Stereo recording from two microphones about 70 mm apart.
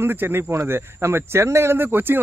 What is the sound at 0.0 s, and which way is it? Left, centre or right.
Speech, right.